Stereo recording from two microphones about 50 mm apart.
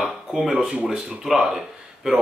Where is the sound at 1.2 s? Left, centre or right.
Centre.